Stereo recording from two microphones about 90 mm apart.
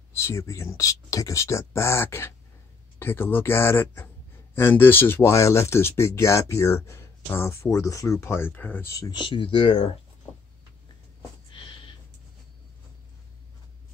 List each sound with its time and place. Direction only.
0.1 s speech: 30° left (ahead or behind)
8.8 s speech: 40° left (ahead or behind)
9.1 s speech: 65° left (ahead or behind); by 9.9 s 85° left